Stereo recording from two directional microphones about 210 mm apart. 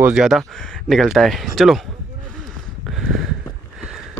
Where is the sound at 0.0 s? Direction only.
5° right (ahead or behind).